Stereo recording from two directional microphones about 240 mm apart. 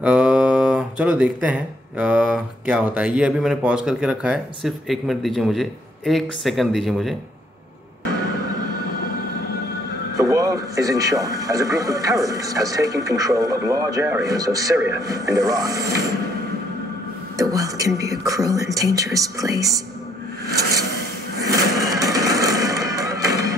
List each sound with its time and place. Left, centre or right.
0.0 s speech: centre
10.1 s speech: centre
17.4 s speech: centre
21.5 s music: centre